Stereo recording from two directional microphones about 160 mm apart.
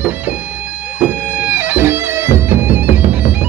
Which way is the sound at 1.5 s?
10° right (ahead or behind).